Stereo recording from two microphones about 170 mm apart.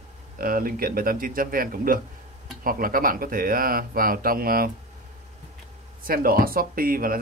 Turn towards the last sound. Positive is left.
turn(degrees=-60)  # may be behind; listen again after turning